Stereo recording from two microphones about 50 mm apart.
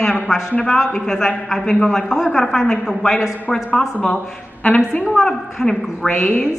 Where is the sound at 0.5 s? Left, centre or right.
Left.